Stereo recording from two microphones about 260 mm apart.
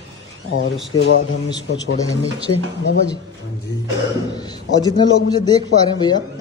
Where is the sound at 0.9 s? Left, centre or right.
Left.